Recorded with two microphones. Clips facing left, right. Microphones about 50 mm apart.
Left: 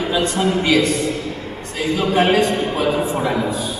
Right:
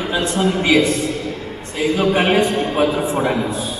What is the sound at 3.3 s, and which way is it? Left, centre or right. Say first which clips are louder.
Speech: even; centre.